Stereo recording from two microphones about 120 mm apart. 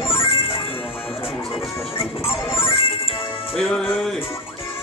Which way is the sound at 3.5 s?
5° left (ahead or behind).